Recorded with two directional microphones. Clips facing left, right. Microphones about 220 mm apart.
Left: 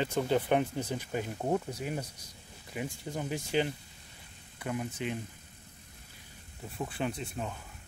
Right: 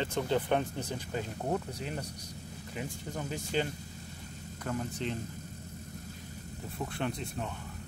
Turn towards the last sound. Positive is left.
turn(degrees=5)  # may be behind; listen again after turning